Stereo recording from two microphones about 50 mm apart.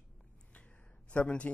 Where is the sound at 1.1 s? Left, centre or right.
Left.